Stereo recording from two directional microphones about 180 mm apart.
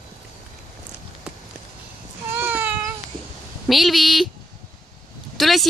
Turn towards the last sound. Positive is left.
turn(degrees=0)  # may be behind; listen again after turning